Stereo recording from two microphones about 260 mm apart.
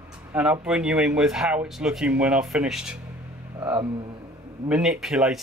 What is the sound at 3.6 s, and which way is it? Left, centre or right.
Speech, centre.